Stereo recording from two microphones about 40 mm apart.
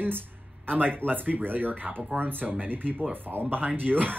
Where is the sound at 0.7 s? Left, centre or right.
Right.